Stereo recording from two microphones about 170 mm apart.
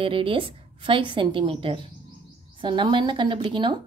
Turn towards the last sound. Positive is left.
turn(degrees=-30)  # may be behind; listen again after turning